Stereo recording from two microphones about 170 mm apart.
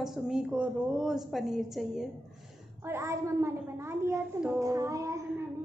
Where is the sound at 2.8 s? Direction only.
15° right (ahead or behind).